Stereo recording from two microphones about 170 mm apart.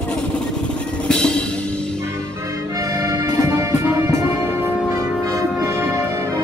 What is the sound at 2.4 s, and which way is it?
Music, 20° right (ahead or behind).